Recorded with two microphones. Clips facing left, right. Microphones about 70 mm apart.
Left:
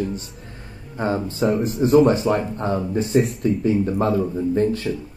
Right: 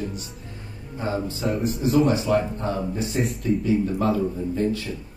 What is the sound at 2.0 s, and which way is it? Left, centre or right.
Speech, left.